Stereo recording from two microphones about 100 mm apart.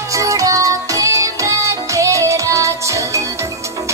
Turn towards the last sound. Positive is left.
turn(degrees=-30)  # may be behind; listen again after turning